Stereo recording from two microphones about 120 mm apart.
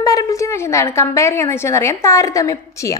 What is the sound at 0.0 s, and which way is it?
A woman's voice, 30° left (ahead or behind).